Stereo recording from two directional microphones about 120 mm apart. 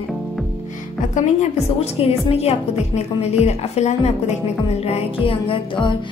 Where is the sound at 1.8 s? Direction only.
55° left (ahead or behind).